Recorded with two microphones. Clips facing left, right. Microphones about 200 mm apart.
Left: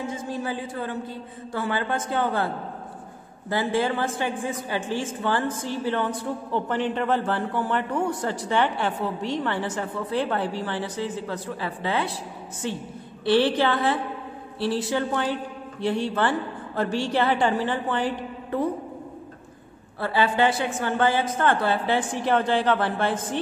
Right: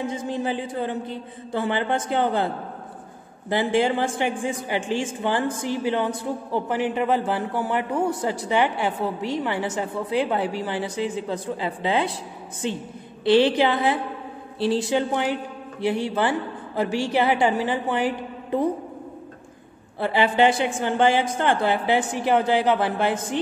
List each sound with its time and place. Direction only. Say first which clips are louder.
0.1 s a man's voice: right 3 dB; 20° right (ahead or behind)
20.0 s a woman's voice: right 3 dB; 20° right (ahead or behind)